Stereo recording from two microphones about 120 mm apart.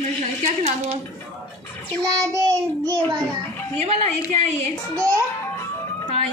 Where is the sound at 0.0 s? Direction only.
70° right (ahead or behind).